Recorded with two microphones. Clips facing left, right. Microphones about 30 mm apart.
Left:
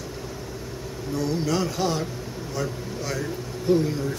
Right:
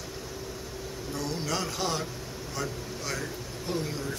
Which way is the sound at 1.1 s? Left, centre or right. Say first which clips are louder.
Left 7 dB; centre.